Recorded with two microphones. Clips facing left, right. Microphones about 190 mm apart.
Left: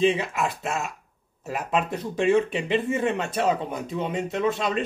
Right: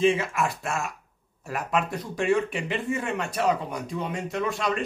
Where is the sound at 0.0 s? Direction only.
20° left (ahead or behind).